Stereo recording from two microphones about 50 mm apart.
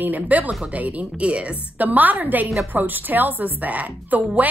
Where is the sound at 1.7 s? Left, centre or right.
Right.